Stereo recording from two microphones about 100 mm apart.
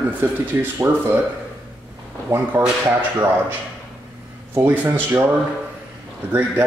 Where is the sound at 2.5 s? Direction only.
35° right (ahead or behind).